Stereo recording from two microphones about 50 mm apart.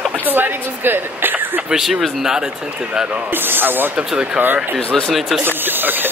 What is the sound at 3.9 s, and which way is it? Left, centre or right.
Speech, centre.